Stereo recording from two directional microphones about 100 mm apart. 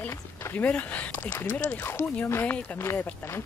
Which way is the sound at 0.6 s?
15° left (ahead or behind).